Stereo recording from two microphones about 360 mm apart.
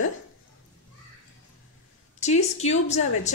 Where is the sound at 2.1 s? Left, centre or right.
Centre.